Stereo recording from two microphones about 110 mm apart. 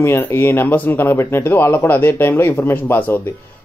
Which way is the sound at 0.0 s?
20° left (ahead or behind).